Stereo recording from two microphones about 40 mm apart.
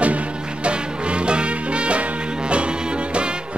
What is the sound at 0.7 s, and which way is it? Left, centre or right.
Music, right.